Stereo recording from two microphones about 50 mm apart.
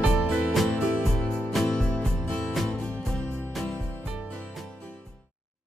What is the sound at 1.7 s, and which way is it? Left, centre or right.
Music, left.